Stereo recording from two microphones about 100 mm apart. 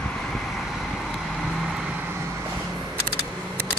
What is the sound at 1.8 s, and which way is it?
Vehicle, 15° right (ahead or behind).